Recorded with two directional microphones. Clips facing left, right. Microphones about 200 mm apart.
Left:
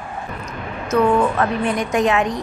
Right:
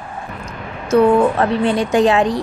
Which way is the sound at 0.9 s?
30° right (ahead or behind).